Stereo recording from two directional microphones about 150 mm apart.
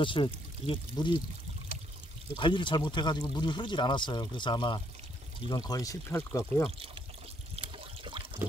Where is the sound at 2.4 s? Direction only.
30° left (ahead or behind).